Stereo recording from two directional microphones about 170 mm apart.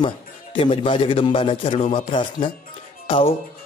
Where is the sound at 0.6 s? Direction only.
30° left (ahead or behind).